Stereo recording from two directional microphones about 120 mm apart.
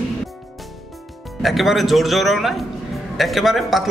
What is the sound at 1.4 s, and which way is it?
A man's voice, centre (ahead or behind).